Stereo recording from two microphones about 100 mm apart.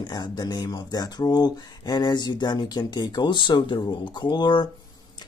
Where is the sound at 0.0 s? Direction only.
45° left (ahead or behind).